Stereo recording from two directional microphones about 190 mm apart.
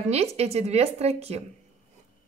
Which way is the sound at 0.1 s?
35° right (ahead or behind).